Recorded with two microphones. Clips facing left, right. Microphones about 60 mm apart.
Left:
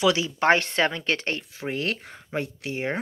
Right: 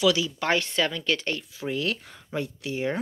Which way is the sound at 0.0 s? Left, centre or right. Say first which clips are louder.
Left 2 dB; left.